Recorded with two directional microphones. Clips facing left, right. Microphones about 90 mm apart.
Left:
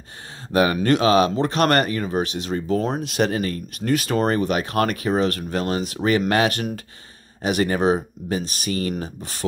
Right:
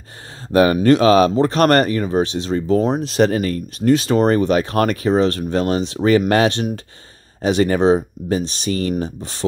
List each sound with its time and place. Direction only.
0.5 s speech: 35° right (ahead or behind)